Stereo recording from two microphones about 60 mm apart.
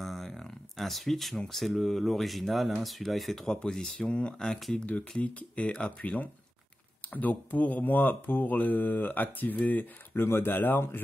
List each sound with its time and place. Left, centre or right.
0.0 s a sound: centre
1.5 s speech: centre
4.5 s speech: centre
4.7 s speech: left